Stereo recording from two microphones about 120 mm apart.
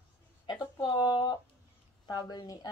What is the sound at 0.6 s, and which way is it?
Speech, 35° left (ahead or behind).